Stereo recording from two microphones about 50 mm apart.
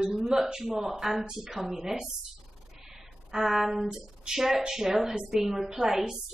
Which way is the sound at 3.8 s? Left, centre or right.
Centre.